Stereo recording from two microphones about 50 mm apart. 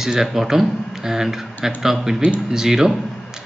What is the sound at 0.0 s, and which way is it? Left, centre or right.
A man's voice, centre.